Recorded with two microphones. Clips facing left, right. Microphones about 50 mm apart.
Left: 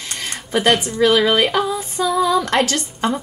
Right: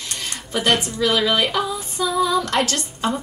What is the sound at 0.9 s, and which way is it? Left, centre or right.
Female singing, left.